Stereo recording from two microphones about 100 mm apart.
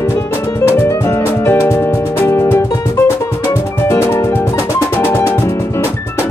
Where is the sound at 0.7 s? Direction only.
30° left (ahead or behind).